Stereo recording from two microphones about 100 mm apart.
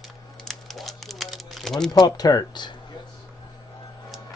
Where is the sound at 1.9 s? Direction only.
40° left (ahead or behind).